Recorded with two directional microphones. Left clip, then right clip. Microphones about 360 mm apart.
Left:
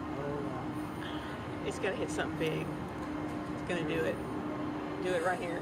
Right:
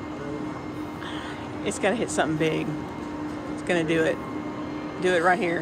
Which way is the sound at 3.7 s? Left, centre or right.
Centre.